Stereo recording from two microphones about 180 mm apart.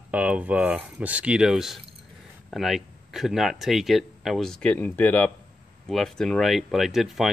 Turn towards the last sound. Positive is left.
turn(degrees=0)  # may be behind; listen again after turning